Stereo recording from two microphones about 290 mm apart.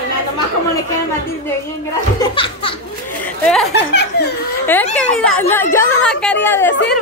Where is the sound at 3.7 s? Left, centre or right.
Left.